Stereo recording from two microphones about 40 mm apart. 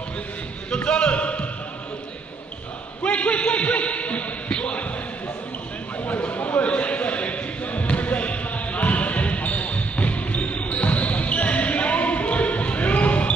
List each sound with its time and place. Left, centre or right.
0.8 s basketball bounce: left
3.0 s a sound: left
6.3 s basketball bounce: left